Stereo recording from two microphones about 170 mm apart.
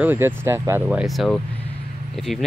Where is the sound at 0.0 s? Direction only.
10° right (ahead or behind).